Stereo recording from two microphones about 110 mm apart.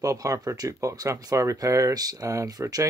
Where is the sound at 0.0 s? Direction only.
30° right (ahead or behind).